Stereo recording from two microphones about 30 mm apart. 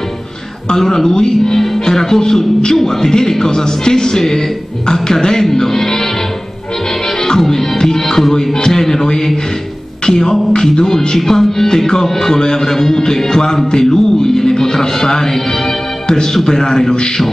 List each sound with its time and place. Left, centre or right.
0.7 s speech: centre
7.3 s speech: centre
10.0 s music: left
11.1 s speech: centre
13.7 s music: left
16.4 s speech: centre